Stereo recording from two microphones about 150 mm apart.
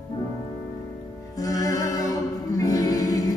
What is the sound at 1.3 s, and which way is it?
Music, 25° left (ahead or behind).